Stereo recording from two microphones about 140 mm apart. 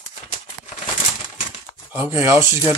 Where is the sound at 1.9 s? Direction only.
15° right (ahead or behind).